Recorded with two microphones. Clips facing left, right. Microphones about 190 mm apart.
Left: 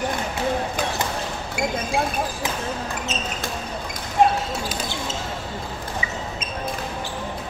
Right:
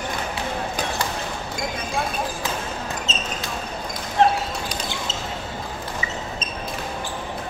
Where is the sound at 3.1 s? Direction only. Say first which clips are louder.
Left 2 dB; 15° left (ahead or behind).